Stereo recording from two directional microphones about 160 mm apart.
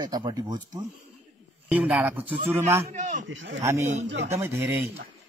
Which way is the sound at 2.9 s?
50° right (ahead or behind).